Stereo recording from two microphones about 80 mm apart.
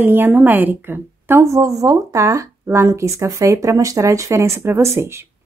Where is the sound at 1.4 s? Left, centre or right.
Right.